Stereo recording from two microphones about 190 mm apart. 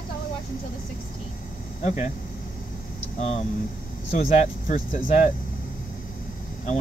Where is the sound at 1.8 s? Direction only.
40° left (ahead or behind).